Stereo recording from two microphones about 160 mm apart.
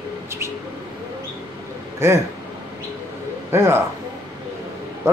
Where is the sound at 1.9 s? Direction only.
15° right (ahead or behind).